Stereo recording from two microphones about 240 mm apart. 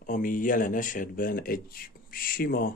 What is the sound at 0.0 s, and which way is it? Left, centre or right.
Speech, left.